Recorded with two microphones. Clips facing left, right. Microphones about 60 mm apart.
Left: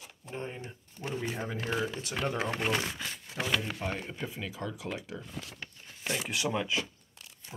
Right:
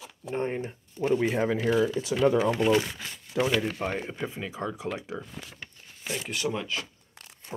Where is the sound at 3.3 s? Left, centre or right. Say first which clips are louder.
Right 9 dB; right.